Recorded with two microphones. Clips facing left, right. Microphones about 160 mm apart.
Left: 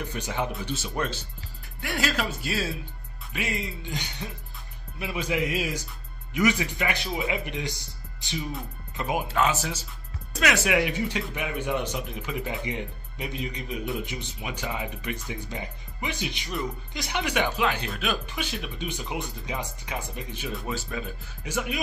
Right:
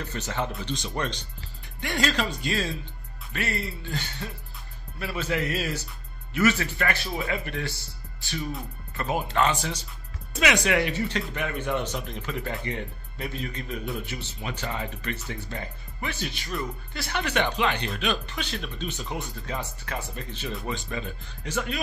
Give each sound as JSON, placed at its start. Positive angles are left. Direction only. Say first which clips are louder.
{"t": 0.0, "sound": "speech", "louder": "left 1 dB", "side_deg": 10}